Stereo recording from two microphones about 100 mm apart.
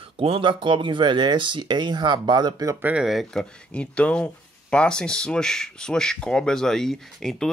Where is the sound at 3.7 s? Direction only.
10° left (ahead or behind).